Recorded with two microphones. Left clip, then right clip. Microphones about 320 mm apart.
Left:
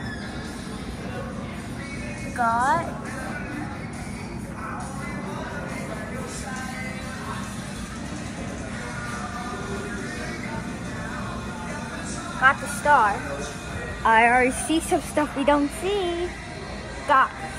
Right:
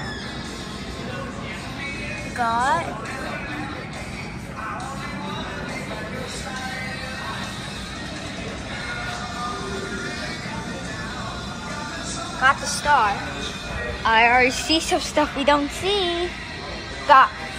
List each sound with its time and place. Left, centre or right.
2.3 s a woman's voice: centre
12.4 s a woman's voice: centre